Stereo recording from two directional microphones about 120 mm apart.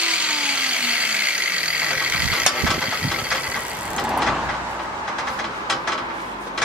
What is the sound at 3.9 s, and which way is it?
Vehicle, centre (ahead or behind).